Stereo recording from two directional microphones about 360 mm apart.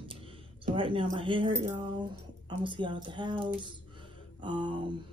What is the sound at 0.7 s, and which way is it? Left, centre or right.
Speech, centre.